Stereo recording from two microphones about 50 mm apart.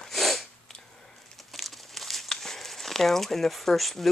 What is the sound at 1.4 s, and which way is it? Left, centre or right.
Crumpling, centre.